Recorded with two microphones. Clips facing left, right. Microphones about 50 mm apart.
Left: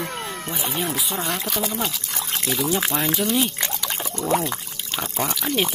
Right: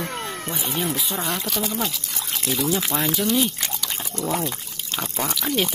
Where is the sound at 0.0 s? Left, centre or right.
Centre.